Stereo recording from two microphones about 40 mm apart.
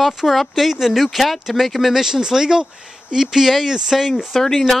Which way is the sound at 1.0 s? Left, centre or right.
Centre.